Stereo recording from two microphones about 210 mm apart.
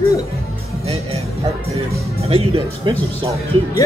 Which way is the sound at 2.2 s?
25° right (ahead or behind).